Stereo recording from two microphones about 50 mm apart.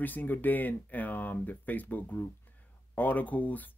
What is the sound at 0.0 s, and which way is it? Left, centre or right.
Speech, left.